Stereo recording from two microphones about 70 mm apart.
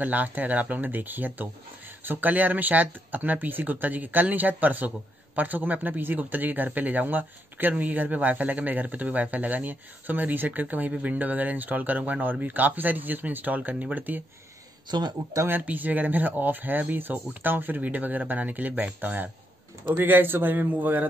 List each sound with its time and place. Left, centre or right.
0.0 s speech: right
14.9 s speech: right
15.6 s speech: right